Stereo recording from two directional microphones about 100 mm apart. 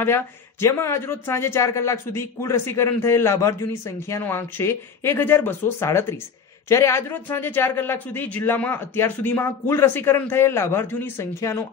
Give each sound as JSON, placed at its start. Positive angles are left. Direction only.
{"t": 0.0, "sound": "speech", "side_deg": 25}